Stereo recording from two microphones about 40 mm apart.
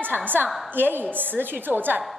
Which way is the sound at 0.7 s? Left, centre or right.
Right.